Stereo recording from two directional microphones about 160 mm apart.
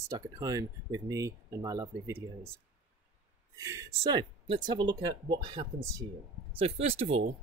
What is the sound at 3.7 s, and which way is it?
Speech, 20° right (ahead or behind).